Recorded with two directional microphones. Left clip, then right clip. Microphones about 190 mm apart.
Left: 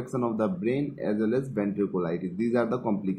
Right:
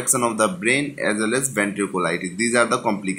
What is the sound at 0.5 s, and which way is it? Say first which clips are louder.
Speech: right 8 dB; 5° right (ahead or behind).